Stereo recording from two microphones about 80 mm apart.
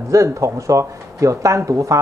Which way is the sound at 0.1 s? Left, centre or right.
Right.